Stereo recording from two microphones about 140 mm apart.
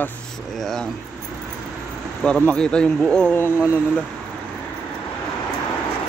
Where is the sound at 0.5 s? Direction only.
5° left (ahead or behind).